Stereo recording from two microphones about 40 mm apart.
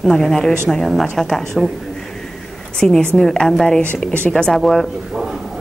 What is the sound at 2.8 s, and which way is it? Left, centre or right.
A woman's voice, left.